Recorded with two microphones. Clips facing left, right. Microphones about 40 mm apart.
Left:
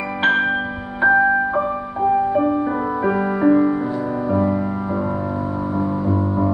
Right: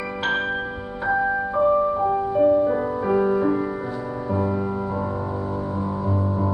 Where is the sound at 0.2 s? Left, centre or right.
Left.